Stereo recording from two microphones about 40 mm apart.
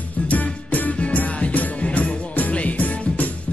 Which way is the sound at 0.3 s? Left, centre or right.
Left.